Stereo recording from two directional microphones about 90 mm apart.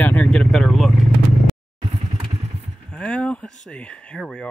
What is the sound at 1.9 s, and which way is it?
Vehicle, 60° right (ahead or behind).